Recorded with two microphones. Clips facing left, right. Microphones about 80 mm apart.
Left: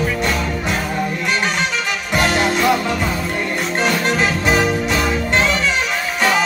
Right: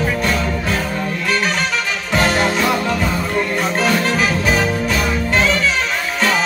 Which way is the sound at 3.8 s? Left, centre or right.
Centre.